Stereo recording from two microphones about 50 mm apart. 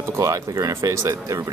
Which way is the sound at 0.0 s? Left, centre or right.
Right.